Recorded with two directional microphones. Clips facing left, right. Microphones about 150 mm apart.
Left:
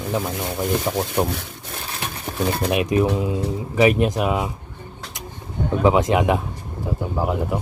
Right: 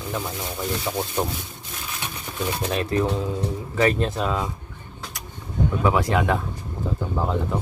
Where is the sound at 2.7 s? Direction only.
15° left (ahead or behind).